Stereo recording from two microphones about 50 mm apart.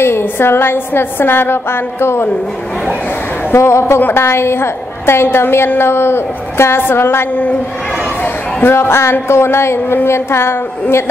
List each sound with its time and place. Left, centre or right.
0.0 s a woman's voice: left
3.5 s a woman's voice: left
8.6 s a woman's voice: left